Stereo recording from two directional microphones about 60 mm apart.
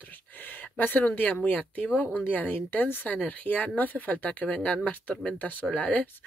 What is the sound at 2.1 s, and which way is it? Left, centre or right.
Speech, left.